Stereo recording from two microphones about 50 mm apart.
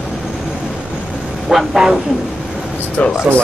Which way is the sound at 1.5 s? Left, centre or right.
Centre.